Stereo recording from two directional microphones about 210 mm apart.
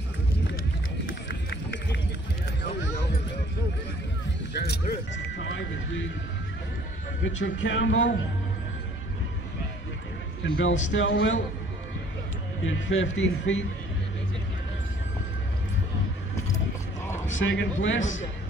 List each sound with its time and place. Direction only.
1.3 s run: 55° left (ahead or behind)
4.6 s a sound: 60° left (ahead or behind)
7.2 s a man's voice: 60° left (ahead or behind)
10.4 s a man's voice: 65° left (ahead or behind)
12.6 s a man's voice: 65° left (ahead or behind)
17.3 s a man's voice: 65° left (ahead or behind)